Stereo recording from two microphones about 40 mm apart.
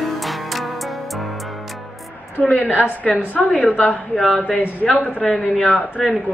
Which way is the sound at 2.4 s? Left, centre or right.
Left.